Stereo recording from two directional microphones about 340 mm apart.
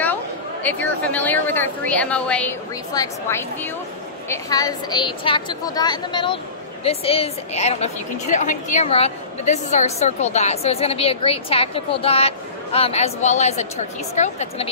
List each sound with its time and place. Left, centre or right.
0.0 s a woman's voice: centre